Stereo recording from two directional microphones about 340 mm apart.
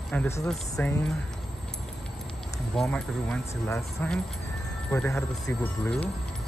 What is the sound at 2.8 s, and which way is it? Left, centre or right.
Speech, centre.